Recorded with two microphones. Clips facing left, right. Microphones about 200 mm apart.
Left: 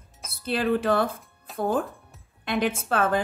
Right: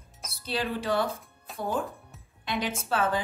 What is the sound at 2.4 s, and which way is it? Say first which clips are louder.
Music: left 6 dB; 55° left (ahead or behind).